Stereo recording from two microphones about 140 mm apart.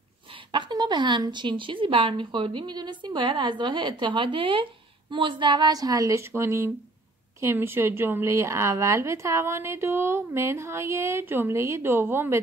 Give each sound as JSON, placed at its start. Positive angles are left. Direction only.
{"t": 0.5, "sound": "a woman's voice", "side_deg": -30}